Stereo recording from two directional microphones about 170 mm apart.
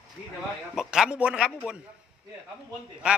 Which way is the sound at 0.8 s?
5° right (ahead or behind).